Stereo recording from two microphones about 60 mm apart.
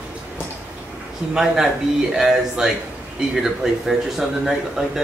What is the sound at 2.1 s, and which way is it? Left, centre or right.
Speech, centre.